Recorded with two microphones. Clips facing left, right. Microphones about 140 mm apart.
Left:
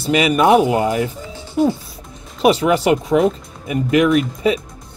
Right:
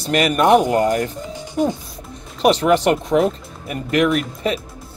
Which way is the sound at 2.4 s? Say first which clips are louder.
Even; 5° left (ahead or behind).